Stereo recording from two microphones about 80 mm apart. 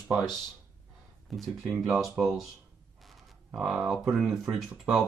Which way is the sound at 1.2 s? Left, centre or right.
Centre.